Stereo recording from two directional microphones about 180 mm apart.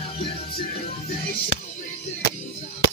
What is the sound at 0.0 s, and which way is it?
Music, 30° left (ahead or behind).